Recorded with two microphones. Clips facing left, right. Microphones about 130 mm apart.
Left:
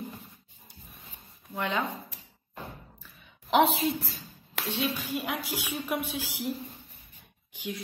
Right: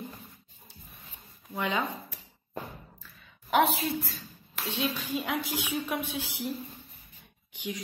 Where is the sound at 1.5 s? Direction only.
Centre (ahead or behind).